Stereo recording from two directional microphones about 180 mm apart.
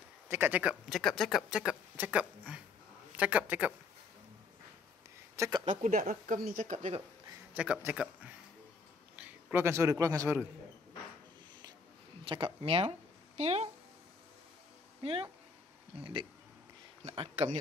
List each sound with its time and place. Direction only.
0.3 s speech: 10° right (ahead or behind)
5.3 s a sound: 15° right (ahead or behind)
5.7 s speech: 45° right (ahead or behind)
7.5 s a man's voice: 5° right (ahead or behind)
12.3 s speech: 30° right (ahead or behind)
15.0 s speech: 30° right (ahead or behind)